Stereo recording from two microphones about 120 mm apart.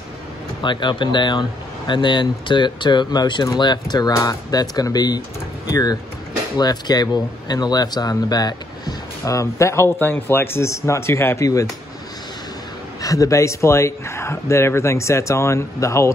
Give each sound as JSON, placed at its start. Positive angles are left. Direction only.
{"t": 0.6, "sound": "speech", "side_deg": 40}
{"t": 13.0, "sound": "speech", "side_deg": 30}